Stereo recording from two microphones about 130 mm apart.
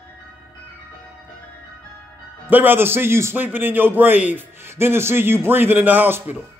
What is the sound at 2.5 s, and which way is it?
A man's voice, 15° right (ahead or behind).